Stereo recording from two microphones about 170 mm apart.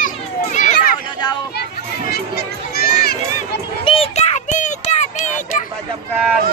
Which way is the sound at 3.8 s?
35° left (ahead or behind).